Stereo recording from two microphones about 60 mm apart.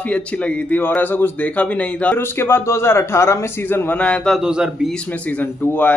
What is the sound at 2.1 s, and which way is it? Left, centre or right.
A man's voice, left.